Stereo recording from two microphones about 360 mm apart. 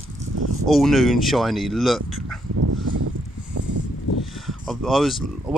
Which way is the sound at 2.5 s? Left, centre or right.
Right.